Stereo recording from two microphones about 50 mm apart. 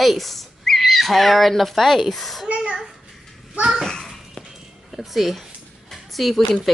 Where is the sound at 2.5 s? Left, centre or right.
Right.